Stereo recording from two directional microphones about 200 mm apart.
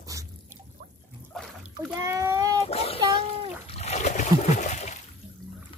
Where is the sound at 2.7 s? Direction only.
30° left (ahead or behind).